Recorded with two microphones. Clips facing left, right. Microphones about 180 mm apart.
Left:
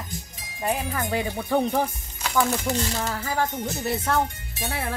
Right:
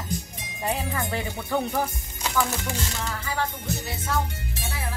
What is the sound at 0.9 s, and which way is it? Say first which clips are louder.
Speech: left 3 dB; 15° left (ahead or behind).